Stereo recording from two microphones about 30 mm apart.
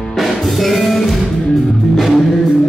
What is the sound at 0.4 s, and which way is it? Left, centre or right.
Music, centre.